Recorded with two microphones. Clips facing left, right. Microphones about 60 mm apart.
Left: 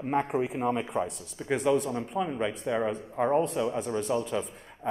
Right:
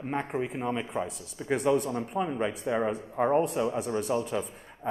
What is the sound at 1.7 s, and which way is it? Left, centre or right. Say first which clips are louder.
Speech: even; right.